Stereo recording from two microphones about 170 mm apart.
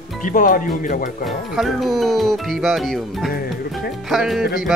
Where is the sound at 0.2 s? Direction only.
55° left (ahead or behind).